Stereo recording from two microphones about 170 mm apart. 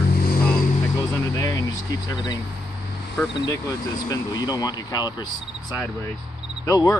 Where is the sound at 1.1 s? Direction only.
20° left (ahead or behind).